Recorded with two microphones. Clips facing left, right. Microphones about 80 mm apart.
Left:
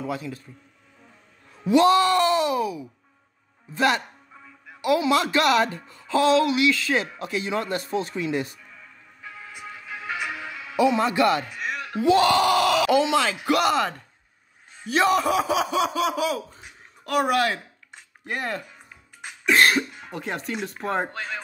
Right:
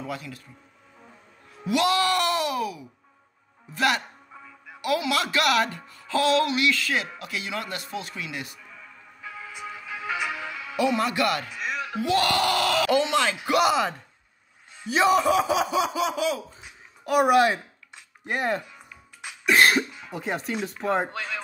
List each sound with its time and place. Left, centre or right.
0.0 s speech: left
1.7 s speech: left
7.0 s speech: left
9.4 s music: right
10.3 s music: centre
10.8 s speech: centre
11.5 s a sound: centre
12.0 s speech: left
13.2 s speech: centre
17.0 s speech: centre
19.4 s speech: centre